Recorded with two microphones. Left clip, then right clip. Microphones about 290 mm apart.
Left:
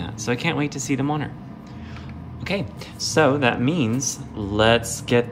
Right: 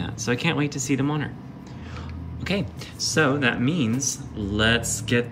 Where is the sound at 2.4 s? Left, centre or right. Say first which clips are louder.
Left 1 dB; centre.